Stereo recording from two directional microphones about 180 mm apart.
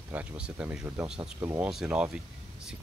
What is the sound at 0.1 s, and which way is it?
Speech, 5° right (ahead or behind).